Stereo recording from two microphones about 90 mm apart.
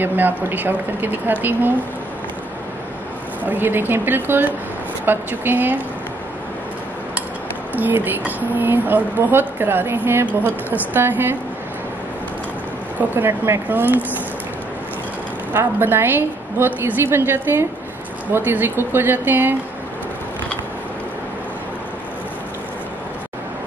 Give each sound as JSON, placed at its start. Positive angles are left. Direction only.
{"t": 0.0, "sound": "speech", "side_deg": -20}
{"t": 3.4, "sound": "speech", "side_deg": -20}
{"t": 7.7, "sound": "speech", "side_deg": -20}
{"t": 13.1, "sound": "speech", "side_deg": -25}
{"t": 15.5, "sound": "speech", "side_deg": -25}